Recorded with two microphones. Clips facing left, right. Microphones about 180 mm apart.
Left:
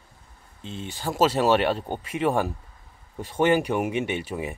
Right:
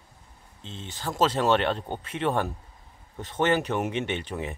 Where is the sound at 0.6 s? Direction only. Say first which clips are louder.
Left 4 dB; 10° left (ahead or behind).